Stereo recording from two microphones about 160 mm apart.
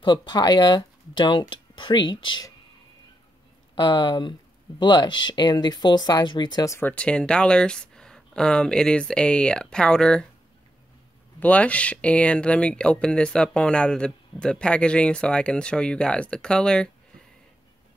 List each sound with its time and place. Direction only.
0.0 s speech: 30° left (ahead or behind)
3.7 s speech: 30° left (ahead or behind)
6.9 s speech: 5° left (ahead or behind)
11.3 s speech: 10° left (ahead or behind)